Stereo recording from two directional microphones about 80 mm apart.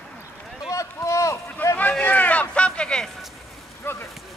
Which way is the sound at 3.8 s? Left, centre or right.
Left.